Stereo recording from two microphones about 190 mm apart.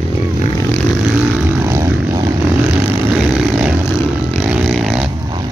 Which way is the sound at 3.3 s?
5° right (ahead or behind).